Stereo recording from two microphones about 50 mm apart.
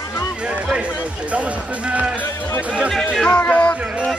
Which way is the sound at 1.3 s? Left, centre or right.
Right.